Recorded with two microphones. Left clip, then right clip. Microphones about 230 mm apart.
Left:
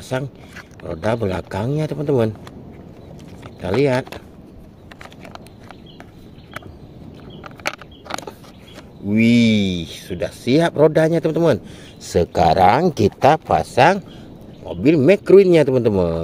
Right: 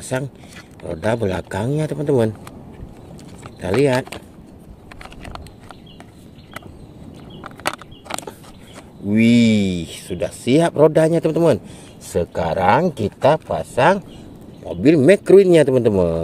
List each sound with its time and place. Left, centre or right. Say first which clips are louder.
0.1 s speech: even; centre
3.4 s speech: right 1 dB; centre
7.4 s a sound: right 1 dB; centre
9.1 s speech: even; centre
12.0 s speech: left 5 dB; left
14.7 s speech: right 1 dB; centre